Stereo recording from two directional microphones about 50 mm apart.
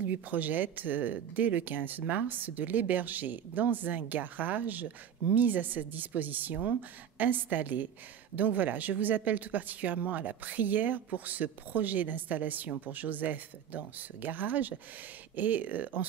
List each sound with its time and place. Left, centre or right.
0.0 s speech: right